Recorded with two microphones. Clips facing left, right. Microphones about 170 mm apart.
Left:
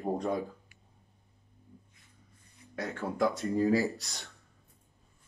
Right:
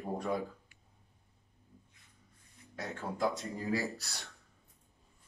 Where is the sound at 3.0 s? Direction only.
70° left (ahead or behind).